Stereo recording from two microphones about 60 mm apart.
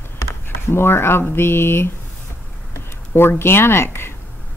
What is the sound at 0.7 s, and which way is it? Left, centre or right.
Speech, left.